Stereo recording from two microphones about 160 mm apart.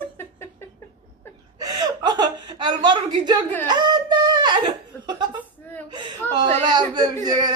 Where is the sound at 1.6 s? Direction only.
25° right (ahead or behind).